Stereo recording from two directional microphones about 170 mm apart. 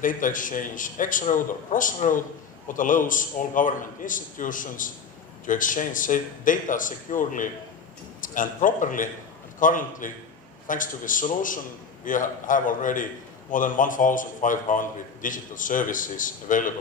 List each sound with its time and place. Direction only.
0.0 s a man's voice: 50° left (ahead or behind)